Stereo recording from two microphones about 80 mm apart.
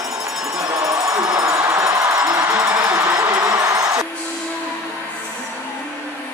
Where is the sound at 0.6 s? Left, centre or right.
Right.